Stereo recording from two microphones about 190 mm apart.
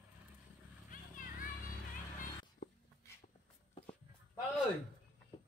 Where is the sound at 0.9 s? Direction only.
45° left (ahead or behind).